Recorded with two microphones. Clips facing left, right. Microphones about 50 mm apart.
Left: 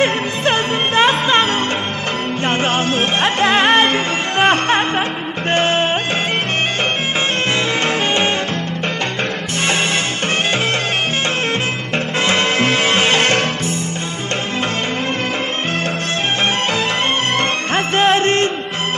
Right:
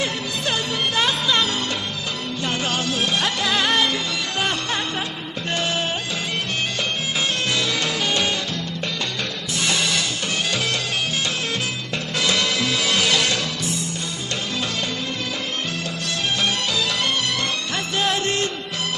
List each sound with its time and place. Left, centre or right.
0.0 s music: left
7.8 s music: left
12.2 s music: left
17.4 s music: left